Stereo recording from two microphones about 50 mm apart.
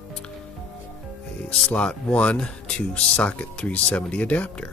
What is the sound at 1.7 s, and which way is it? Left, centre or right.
Speech, left.